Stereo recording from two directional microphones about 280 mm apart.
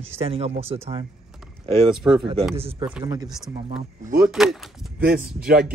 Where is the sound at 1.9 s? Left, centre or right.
Centre.